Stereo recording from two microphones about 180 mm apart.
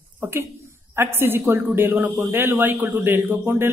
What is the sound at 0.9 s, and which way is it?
A woman's voice, 10° right (ahead or behind).